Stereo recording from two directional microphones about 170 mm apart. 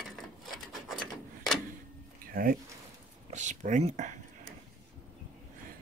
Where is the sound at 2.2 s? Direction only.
55° right (ahead or behind).